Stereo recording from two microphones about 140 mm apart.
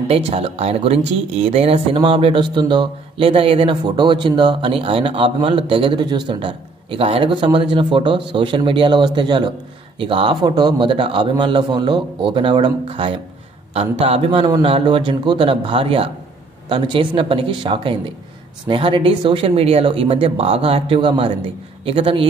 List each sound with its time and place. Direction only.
0.1 s speech: 45° right (ahead or behind)